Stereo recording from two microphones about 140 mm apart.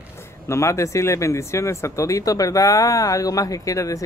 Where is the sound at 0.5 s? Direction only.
20° left (ahead or behind).